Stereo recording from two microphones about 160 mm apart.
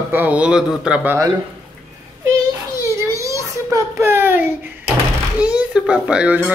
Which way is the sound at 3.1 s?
20° right (ahead or behind).